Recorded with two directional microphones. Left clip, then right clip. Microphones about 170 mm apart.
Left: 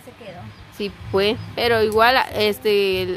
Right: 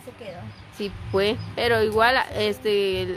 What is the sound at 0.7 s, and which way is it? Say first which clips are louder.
Speech: left 3 dB; 15° left (ahead or behind).